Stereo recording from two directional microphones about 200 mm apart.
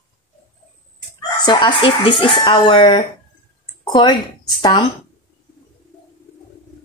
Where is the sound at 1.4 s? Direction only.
25° left (ahead or behind).